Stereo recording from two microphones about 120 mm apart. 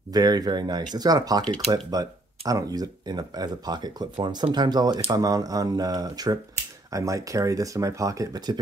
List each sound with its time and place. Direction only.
0.1 s speech: 35° right (ahead or behind)